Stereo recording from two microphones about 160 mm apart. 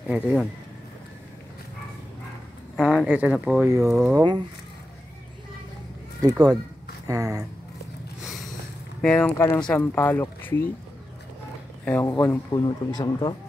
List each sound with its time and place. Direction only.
0.1 s speech: 5° right (ahead or behind)
2.8 s speech: 5° right (ahead or behind)
4.1 s speech: 25° right (ahead or behind)
7.1 s speech: 20° right (ahead or behind)
8.2 s a sound: centre (ahead or behind)
9.0 s speech: 5° left (ahead or behind)
11.8 s speech: 10° left (ahead or behind)
12.1 s a man's voice: 25° left (ahead or behind)